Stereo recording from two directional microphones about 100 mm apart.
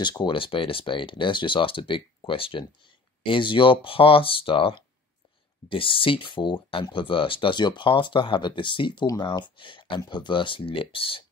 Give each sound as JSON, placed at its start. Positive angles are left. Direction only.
{"t": 0.2, "sound": "speech", "side_deg": 60}
{"t": 9.0, "sound": "speech", "side_deg": 40}